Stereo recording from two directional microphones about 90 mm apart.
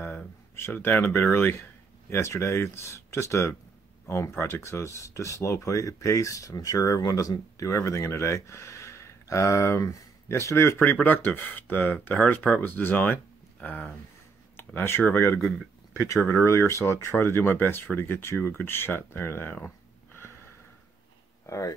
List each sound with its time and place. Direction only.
0.6 s speech: 25° left (ahead or behind)
21.5 s speech: 35° left (ahead or behind)